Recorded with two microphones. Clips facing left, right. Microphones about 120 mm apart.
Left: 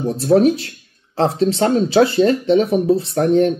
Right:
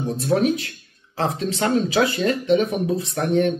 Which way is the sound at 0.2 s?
35° left (ahead or behind).